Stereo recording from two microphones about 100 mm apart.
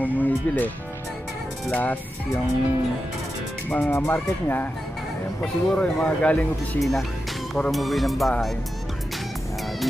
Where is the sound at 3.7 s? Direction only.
15° left (ahead or behind).